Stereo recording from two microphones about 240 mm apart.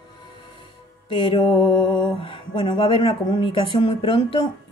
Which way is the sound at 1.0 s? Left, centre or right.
Left.